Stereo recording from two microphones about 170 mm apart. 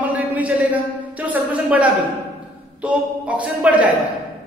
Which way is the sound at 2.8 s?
10° right (ahead or behind).